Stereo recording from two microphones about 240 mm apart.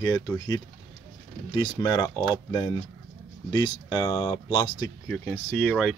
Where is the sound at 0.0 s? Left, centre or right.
Centre.